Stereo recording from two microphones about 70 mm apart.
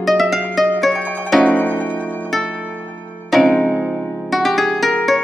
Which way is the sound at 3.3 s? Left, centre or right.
Centre.